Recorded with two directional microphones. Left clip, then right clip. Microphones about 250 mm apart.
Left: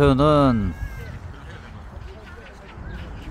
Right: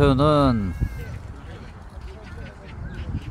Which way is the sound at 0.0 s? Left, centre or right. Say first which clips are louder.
Left 2 dB; centre.